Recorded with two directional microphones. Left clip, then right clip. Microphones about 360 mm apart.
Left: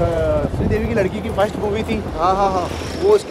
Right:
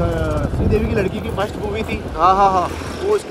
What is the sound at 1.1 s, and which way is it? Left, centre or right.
Speech, left.